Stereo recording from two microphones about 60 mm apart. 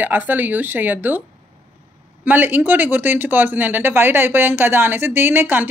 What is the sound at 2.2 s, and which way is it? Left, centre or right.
Speech, right.